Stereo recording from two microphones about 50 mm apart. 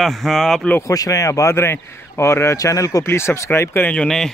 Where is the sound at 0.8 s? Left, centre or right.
Left.